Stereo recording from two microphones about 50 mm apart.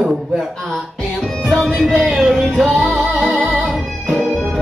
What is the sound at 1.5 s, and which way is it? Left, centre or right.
Music, centre.